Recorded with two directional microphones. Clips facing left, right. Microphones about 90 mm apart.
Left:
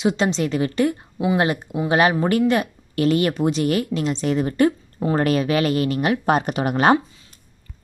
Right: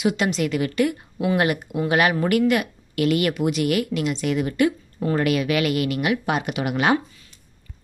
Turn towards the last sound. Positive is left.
turn(degrees=40)  # may be behind; listen again after turning